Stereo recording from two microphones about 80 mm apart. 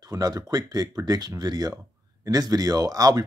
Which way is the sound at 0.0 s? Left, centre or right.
Right.